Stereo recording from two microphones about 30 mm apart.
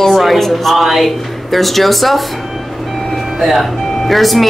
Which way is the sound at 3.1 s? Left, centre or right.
Centre.